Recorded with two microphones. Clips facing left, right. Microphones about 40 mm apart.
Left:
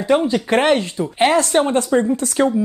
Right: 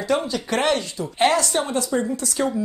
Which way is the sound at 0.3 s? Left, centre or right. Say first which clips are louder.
Left 6 dB; left.